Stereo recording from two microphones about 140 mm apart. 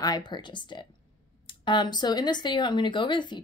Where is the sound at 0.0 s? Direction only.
30° left (ahead or behind).